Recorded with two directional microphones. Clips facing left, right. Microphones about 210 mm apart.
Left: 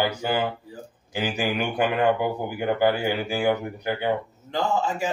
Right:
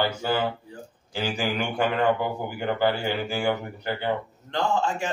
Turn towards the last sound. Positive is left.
turn(degrees=5)  # may be behind; listen again after turning